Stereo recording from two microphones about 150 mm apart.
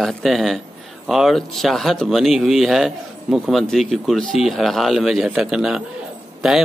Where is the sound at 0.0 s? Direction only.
Centre (ahead or behind).